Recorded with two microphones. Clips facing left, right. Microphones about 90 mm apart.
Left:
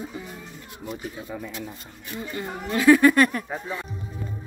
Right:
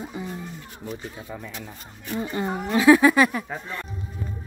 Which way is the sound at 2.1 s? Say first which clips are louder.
Right 5 dB; 25° right (ahead or behind).